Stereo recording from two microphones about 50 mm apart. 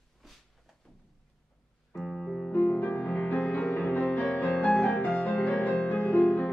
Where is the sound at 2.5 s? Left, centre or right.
Left.